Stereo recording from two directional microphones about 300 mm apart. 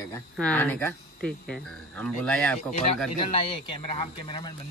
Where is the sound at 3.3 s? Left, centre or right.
Centre.